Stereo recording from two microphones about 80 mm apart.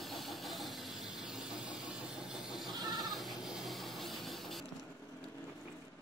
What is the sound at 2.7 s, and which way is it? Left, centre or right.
Goat, right.